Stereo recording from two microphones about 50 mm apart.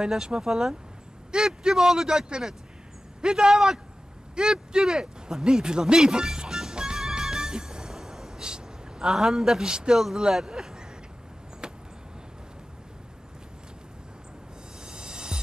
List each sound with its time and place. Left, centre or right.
0.0 s speech: centre
4.4 s a sound: centre
10.0 s speech: centre
11.6 s vehicle: centre
14.9 s music: centre